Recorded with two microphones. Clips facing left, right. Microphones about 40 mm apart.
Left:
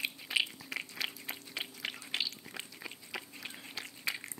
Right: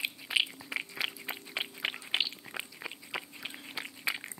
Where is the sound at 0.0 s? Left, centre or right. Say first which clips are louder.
Right 2 dB; centre.